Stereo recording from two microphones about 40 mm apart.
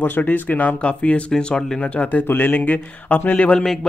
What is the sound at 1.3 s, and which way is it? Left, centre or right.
Speech, centre.